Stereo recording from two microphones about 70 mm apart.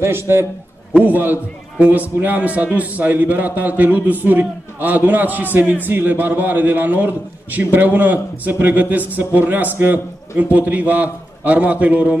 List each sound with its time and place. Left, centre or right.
0.0 s a man's voice: right
0.9 s a man's voice: right